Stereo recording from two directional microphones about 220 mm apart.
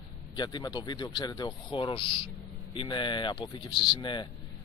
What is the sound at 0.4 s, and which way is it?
A man's voice, 20° left (ahead or behind).